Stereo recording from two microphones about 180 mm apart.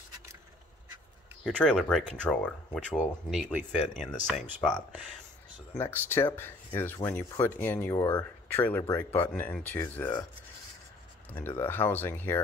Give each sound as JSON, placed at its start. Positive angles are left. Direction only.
{"t": 1.4, "sound": "speech", "side_deg": 5}
{"t": 11.2, "sound": "speech", "side_deg": 10}